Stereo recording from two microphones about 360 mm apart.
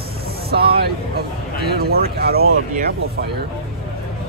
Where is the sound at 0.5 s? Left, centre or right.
Right.